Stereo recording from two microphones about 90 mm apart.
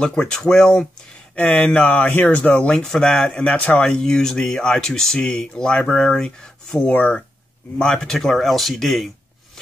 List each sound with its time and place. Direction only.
0.0 s speech: 10° left (ahead or behind)
6.9 s speech: 15° left (ahead or behind)
7.8 s speech: 5° left (ahead or behind)